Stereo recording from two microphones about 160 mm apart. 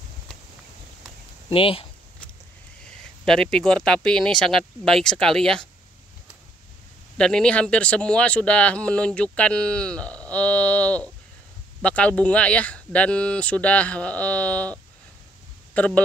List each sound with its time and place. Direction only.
1.5 s speech: 35° left (ahead or behind)
3.3 s speech: 5° left (ahead or behind)
7.2 s speech: 5° left (ahead or behind)